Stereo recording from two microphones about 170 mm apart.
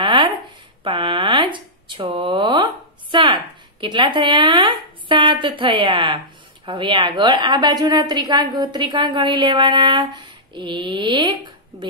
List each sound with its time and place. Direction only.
0.0 s a sound: 30° right (ahead or behind)
0.8 s shuffling cards: 30° right (ahead or behind)
3.8 s a woman's voice: 30° right (ahead or behind)